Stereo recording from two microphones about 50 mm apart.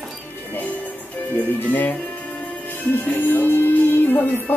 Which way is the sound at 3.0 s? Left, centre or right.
Left.